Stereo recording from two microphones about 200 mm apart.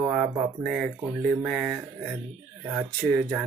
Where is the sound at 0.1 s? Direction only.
Centre (ahead or behind).